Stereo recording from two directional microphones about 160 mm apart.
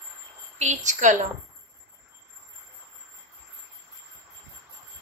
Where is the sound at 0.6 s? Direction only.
50° right (ahead or behind).